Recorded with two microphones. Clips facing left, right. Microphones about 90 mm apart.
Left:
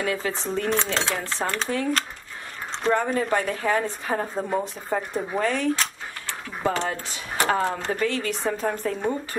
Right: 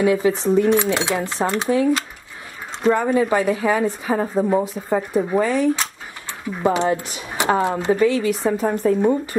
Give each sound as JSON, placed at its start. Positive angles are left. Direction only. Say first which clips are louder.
{"t": 0.0, "sound": "speech", "louder": "right 9 dB", "side_deg": -15}